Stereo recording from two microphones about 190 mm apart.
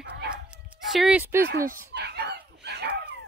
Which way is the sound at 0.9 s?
5° right (ahead or behind).